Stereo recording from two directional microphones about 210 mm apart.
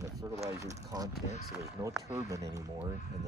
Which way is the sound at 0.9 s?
20° right (ahead or behind).